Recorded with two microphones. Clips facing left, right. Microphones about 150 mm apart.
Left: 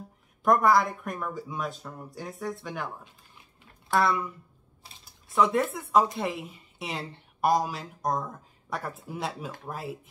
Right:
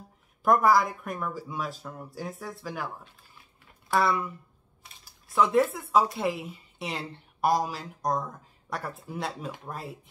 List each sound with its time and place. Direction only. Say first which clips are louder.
0.4 s speech: even; centre (ahead or behind)
3.9 s speech: even; centre (ahead or behind)
4.8 s camera: left 1 dB; 30° left (ahead or behind)
5.3 s speech: right 1 dB; centre (ahead or behind)